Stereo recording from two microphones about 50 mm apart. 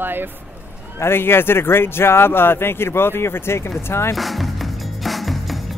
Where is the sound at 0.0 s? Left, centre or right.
Right.